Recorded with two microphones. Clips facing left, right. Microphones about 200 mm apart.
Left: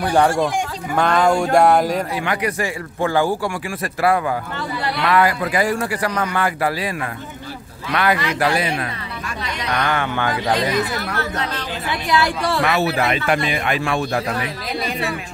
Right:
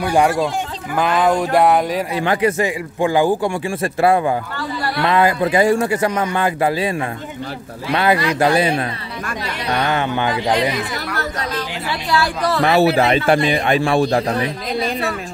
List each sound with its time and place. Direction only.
0.9 s a sound: 5° right (ahead or behind)
2.1 s speech: 25° right (ahead or behind)
3.0 s speech: 15° right (ahead or behind)
11.1 s a man's voice: 40° right (ahead or behind)
11.9 s a woman's voice: 20° left (ahead or behind)
12.6 s a man's voice: 30° right (ahead or behind)